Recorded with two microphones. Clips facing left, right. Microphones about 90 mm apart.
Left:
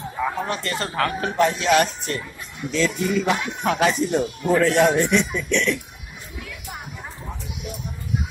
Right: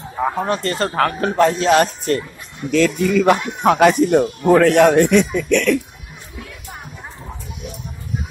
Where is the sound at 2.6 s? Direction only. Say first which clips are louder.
Right 6 dB; 55° right (ahead or behind).